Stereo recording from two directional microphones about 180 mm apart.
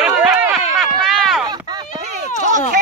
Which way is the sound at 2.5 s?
45° right (ahead or behind).